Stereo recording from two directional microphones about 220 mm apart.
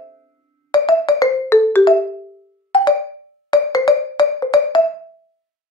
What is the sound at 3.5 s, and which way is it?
Music, 15° left (ahead or behind).